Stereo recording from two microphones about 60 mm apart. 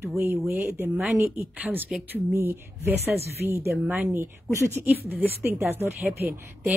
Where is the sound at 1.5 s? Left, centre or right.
Right.